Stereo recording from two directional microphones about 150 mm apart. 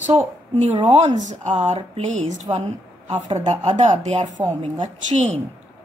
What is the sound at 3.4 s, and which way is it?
Speech, 45° right (ahead or behind).